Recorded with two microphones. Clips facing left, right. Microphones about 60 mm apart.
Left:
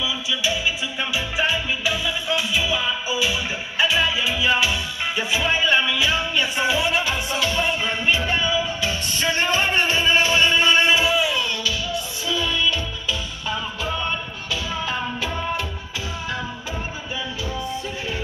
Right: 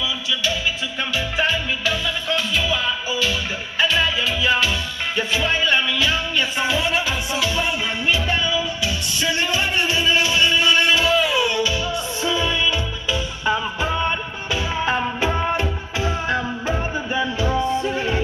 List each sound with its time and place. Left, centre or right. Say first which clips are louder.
1.4 s music: right 1 dB; centre
8.1 s music: even; left
11.3 s music: right 5 dB; centre
11.6 s music: right 3 dB; right